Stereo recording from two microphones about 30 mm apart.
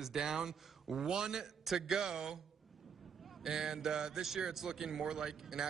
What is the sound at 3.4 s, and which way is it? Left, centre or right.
A man's voice, right.